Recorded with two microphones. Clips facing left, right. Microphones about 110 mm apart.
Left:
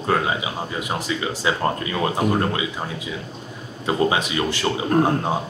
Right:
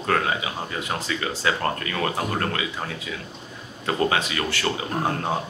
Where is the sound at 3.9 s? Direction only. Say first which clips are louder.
Left 3 dB; 20° left (ahead or behind).